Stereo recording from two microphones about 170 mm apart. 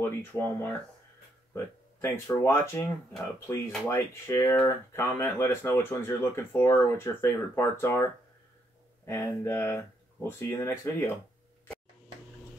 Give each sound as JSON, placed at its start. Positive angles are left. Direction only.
{"t": 0.0, "sound": "speech", "side_deg": 15}
{"t": 9.0, "sound": "speech", "side_deg": 15}